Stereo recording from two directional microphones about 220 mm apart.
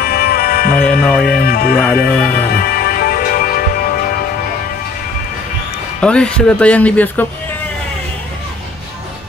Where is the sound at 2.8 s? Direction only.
40° left (ahead or behind).